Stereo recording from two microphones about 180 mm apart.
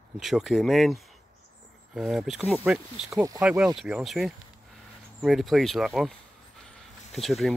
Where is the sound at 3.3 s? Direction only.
5° right (ahead or behind).